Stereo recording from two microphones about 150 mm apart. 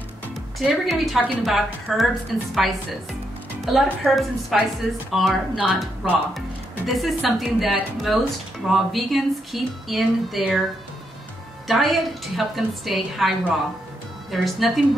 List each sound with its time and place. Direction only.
0.6 s a woman's voice: centre (ahead or behind)
14.3 s a woman's voice: centre (ahead or behind)